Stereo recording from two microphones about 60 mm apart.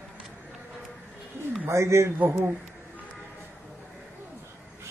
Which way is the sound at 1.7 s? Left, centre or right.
Right.